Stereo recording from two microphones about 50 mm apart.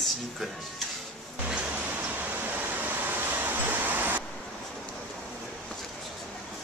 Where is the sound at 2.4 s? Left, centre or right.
Right.